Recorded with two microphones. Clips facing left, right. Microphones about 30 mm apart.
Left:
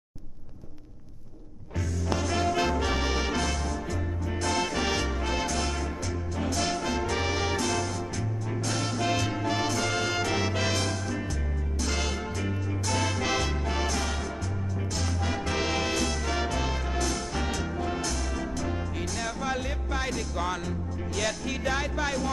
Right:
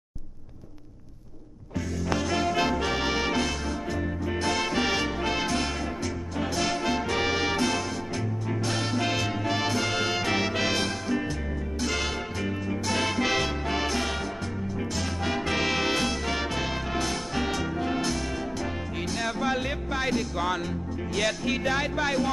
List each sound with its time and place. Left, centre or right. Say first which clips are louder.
2.0 s music: right 1 dB; centre
12.4 s music: right 2 dB; centre
15.2 s music: right 3 dB; right